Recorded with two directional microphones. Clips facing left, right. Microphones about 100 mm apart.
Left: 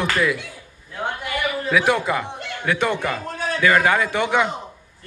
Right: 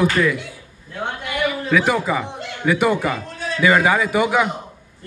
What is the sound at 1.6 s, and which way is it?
A man's voice, centre (ahead or behind).